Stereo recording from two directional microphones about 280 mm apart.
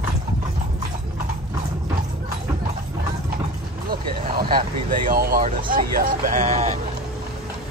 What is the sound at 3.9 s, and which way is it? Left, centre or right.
Vehicle, right.